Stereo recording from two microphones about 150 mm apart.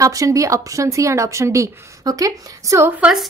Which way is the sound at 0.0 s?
20° right (ahead or behind).